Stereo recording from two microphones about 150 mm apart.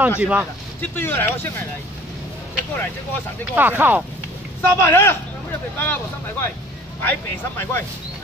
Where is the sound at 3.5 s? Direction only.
10° right (ahead or behind).